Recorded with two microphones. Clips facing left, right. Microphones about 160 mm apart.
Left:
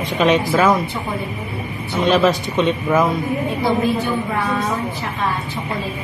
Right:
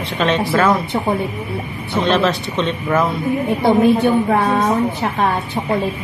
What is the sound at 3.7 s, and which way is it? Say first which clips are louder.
A woman's voice: right 7 dB; 60° right (ahead or behind).